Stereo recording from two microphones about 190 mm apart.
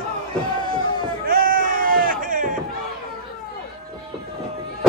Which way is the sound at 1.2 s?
50° right (ahead or behind).